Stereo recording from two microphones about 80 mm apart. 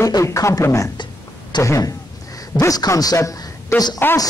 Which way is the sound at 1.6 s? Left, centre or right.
Left.